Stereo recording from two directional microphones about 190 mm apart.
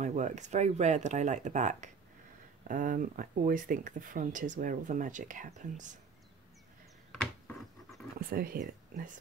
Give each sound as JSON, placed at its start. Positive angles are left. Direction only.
{"t": 0.0, "sound": "speech", "side_deg": -40}
{"t": 7.1, "sound": "a sound", "side_deg": 0}
{"t": 8.2, "sound": "speech", "side_deg": -50}